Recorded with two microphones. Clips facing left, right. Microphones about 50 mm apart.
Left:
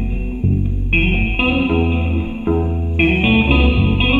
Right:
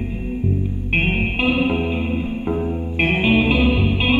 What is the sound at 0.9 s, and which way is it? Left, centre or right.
Music, centre.